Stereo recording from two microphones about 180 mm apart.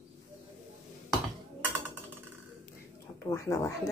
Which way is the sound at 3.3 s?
15° left (ahead or behind).